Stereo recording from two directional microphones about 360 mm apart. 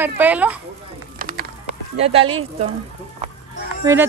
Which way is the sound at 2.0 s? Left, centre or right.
Centre.